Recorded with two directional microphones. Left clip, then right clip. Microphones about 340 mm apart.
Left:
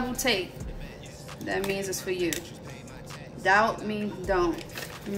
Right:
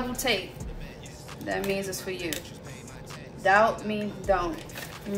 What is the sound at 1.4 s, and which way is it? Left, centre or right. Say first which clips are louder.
A woman's voice: even; centre.